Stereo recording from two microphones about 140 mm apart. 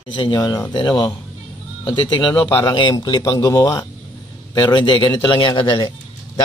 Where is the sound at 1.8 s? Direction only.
35° left (ahead or behind).